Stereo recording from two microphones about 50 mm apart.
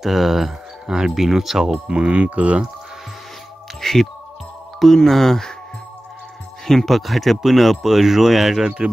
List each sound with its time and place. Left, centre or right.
0.0 s speech: centre
1.6 s speech: centre
3.8 s music: centre
4.7 s speech: centre
6.7 s speech: centre